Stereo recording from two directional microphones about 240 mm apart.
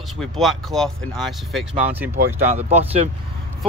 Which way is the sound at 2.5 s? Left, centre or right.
Right.